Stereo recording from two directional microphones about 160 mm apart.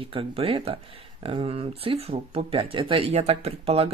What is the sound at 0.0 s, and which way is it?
Speech, 35° right (ahead or behind).